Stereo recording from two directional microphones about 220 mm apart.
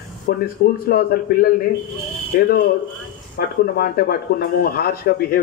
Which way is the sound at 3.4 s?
45° left (ahead or behind).